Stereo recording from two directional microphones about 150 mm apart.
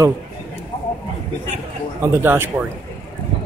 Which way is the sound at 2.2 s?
15° right (ahead or behind).